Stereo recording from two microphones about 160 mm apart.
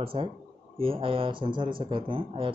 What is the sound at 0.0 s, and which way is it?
Speech, 35° right (ahead or behind).